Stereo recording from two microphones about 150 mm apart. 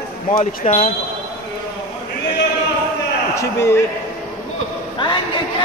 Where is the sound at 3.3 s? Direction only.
20° left (ahead or behind).